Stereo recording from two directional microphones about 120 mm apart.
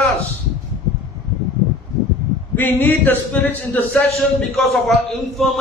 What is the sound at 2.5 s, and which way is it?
A man's voice, 15° left (ahead or behind).